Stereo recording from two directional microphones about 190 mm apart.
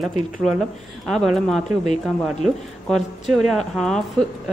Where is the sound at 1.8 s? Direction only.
35° left (ahead or behind).